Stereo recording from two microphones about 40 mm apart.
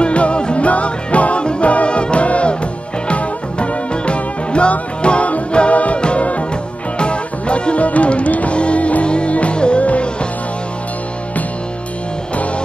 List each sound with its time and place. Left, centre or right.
0.0 s music: left